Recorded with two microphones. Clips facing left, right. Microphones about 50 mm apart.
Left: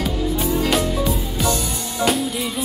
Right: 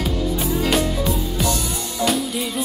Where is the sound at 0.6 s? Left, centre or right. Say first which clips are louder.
Right 2 dB; centre.